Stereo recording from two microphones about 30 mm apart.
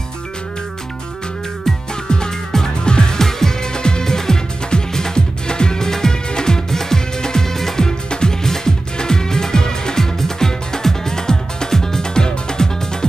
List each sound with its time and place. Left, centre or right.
2.8 s music: left
3.2 s music: centre
3.7 s music: left
8.1 s music: left